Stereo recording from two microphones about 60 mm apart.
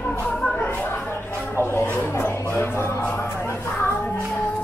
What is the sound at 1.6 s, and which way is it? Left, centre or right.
Speech, left.